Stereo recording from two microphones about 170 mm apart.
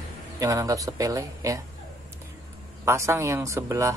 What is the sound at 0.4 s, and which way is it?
Speech, 20° right (ahead or behind).